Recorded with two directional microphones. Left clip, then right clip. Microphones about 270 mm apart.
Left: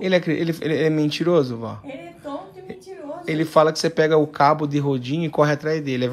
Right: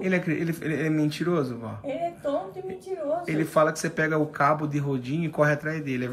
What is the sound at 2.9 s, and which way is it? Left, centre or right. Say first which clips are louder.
Speech: right 7 dB; centre.